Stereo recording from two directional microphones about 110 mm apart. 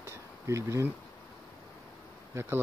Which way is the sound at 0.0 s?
25° right (ahead or behind).